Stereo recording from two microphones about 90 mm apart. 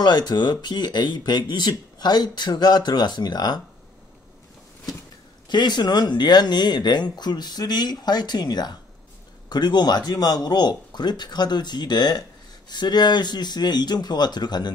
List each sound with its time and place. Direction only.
0.0 s speech: 55° left (ahead or behind)
5.5 s speech: 50° left (ahead or behind)